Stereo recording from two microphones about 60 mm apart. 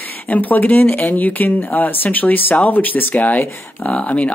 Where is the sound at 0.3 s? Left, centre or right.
Left.